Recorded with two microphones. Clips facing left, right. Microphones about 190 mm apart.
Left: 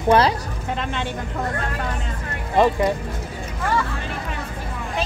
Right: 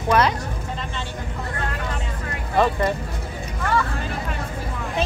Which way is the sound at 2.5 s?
20° left (ahead or behind).